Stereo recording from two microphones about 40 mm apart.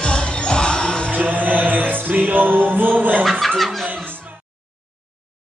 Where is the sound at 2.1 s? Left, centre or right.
Right.